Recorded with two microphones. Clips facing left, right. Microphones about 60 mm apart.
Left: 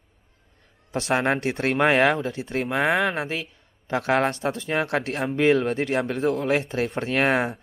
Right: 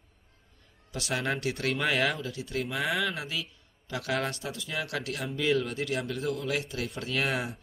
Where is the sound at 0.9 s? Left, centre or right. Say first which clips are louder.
Left 9 dB; left.